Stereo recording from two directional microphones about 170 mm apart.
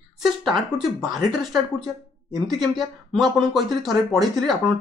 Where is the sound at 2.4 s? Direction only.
Centre (ahead or behind).